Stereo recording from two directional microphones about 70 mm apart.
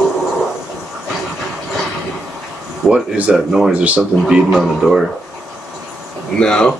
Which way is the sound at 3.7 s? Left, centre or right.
Centre.